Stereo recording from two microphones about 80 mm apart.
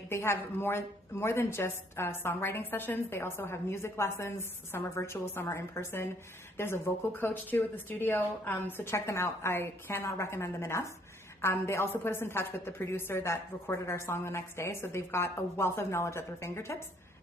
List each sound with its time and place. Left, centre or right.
0.1 s a woman's voice: left